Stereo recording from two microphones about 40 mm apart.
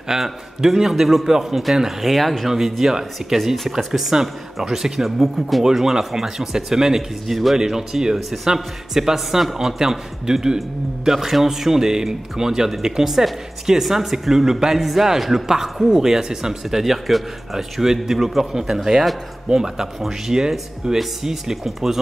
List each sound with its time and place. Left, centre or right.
0.1 s a man's voice: centre
2.8 s speech: centre
7.5 s speech: centre